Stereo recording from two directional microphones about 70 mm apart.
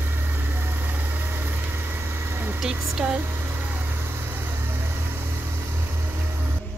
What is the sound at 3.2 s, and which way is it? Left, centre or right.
Vehicle, right.